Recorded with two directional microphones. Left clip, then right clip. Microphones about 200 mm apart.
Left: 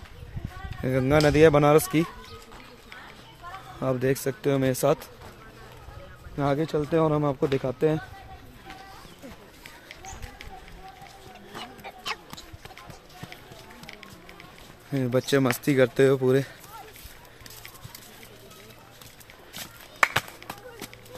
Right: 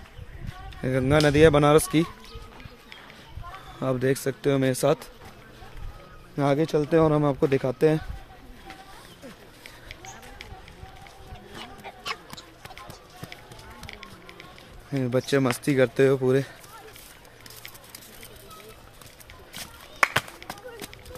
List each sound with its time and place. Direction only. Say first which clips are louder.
0.8 s speech: even; centre (ahead or behind)
3.8 s speech: right 1 dB; 5° right (ahead or behind)
6.3 s speech: right 3 dB; 20° right (ahead or behind)
11.5 s a sound: left 1 dB; centre (ahead or behind)
14.9 s speech: even; centre (ahead or behind)
19.6 s a sound: even; 5° right (ahead or behind)